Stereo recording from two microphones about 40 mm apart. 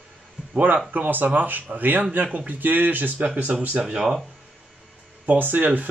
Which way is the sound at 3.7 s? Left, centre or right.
Right.